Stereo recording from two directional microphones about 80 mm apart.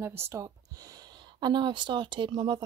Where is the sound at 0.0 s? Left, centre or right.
Right.